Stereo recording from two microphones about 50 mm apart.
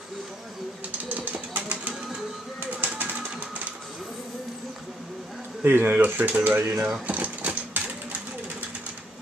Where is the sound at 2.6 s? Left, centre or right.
Right.